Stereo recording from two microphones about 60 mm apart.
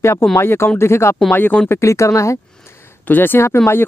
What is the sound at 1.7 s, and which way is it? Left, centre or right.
Speech, left.